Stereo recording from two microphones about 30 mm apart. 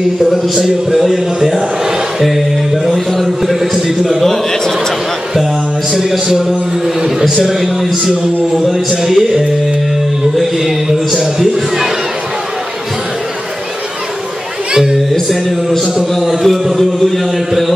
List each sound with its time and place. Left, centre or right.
0.2 s speech: centre
2.9 s speech: centre
3.3 s a sound: centre
4.2 s a sound: centre
6.1 s speech: centre
7.3 s speech: centre
16.2 s speech: centre